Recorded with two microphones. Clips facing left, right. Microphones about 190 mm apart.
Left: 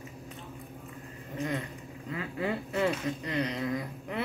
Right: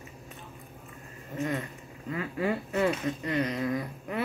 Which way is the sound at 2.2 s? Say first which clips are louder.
Right 3 dB; 25° left (ahead or behind).